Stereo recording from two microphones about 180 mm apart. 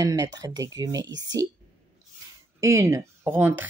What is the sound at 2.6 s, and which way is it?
Speech, 15° right (ahead or behind).